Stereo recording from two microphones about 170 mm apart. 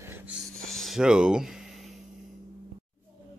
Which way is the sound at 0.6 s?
Centre (ahead or behind).